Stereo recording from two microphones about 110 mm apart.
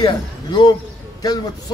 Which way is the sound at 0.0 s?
45° left (ahead or behind).